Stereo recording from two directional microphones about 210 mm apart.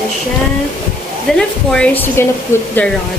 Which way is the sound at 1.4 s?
5° left (ahead or behind).